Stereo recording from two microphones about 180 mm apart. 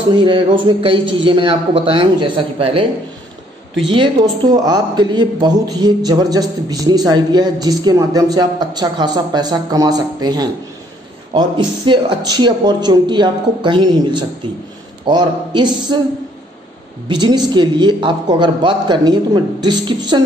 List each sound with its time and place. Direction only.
0.1 s speech: 25° right (ahead or behind)
17.1 s speech: 25° right (ahead or behind)